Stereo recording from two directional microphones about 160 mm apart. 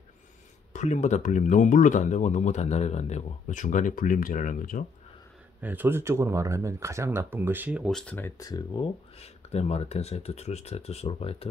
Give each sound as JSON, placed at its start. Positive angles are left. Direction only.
{"t": 0.7, "sound": "speech", "side_deg": 50}
{"t": 5.6, "sound": "speech", "side_deg": -10}
{"t": 7.8, "sound": "speech", "side_deg": 5}
{"t": 8.4, "sound": "speech", "side_deg": 25}